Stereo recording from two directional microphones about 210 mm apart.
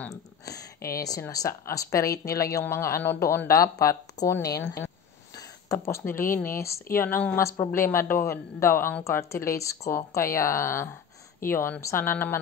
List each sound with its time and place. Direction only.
0.5 s speech: 15° left (ahead or behind)